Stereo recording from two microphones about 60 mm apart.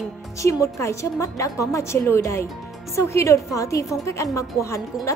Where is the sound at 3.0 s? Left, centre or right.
Left.